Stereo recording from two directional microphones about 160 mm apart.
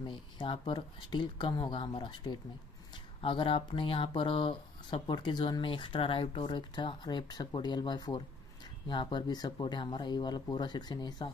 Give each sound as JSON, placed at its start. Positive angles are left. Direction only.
{"t": 0.0, "sound": "speech", "side_deg": 30}